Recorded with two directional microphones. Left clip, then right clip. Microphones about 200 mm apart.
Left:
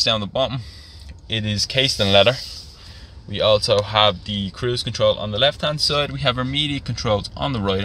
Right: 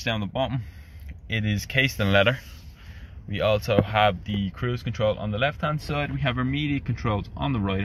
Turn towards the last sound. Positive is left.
turn(degrees=15)  # may be behind; listen again after turning